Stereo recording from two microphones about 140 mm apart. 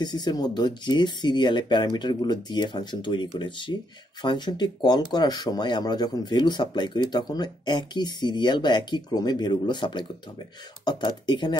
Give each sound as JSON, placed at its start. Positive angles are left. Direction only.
{"t": 0.0, "sound": "speech", "side_deg": 30}